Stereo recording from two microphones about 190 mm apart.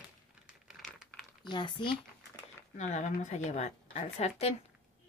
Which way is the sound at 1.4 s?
25° left (ahead or behind).